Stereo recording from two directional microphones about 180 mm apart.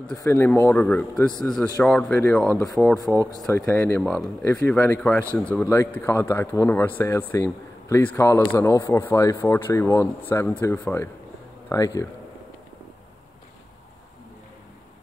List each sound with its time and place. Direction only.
0.1 s speech: 15° left (ahead or behind); by 2.9 s centre (ahead or behind)
3.5 s speech: 15° left (ahead or behind)